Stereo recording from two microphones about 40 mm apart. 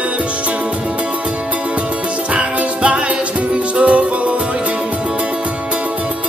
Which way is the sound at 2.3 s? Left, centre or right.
Right.